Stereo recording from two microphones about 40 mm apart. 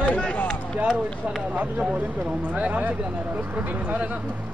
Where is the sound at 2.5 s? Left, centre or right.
Right.